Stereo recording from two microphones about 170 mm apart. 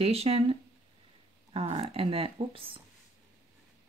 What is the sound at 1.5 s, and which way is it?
Speech, 35° right (ahead or behind).